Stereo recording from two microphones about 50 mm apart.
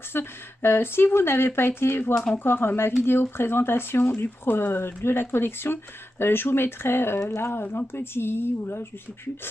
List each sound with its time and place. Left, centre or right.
0.1 s speech: left
7.6 s speech: left